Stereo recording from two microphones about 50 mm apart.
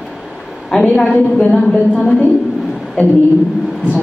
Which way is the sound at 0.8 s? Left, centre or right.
Left.